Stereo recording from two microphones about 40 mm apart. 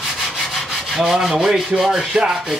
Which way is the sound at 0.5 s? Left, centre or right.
Centre.